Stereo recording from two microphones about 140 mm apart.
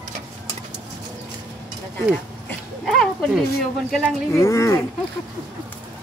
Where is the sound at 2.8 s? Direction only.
5° left (ahead or behind).